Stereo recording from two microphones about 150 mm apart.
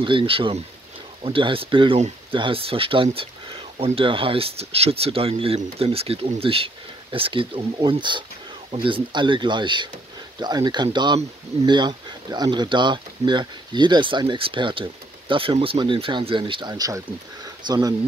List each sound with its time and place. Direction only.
0.0 s speech: 35° right (ahead or behind)